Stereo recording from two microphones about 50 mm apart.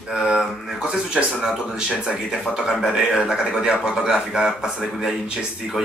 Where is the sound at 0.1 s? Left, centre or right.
Centre.